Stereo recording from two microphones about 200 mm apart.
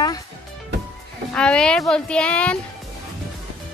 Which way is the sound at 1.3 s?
5° left (ahead or behind).